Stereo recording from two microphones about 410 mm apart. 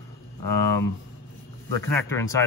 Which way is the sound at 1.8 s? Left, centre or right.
Centre.